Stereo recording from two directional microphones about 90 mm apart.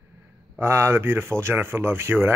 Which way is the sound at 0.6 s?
30° right (ahead or behind).